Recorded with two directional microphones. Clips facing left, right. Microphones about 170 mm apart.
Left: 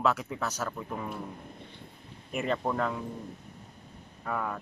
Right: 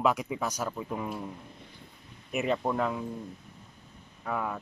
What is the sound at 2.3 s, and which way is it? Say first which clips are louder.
Speech: right 2 dB; 5° right (ahead or behind).